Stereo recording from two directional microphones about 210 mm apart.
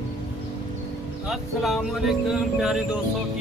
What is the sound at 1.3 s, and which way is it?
Speech, centre (ahead or behind).